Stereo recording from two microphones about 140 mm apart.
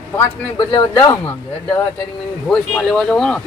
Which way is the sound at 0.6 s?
30° left (ahead or behind).